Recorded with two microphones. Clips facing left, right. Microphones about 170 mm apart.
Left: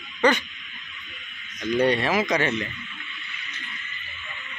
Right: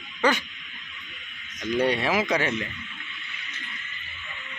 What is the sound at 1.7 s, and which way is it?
Speech, 10° right (ahead or behind).